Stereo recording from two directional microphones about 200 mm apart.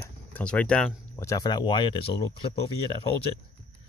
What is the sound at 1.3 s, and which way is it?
A man's voice, 20° left (ahead or behind).